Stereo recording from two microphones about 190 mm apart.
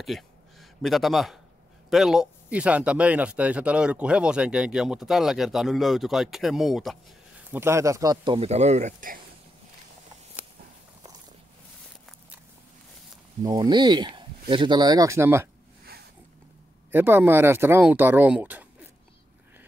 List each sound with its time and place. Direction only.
0.0 s a sound: centre (ahead or behind)
1.9 s speech: centre (ahead or behind)
7.5 s a man's voice: 15° right (ahead or behind); by 9.2 s 40° right (ahead or behind)
13.4 s a man's voice: 20° right (ahead or behind)
16.9 s speech: 10° right (ahead or behind)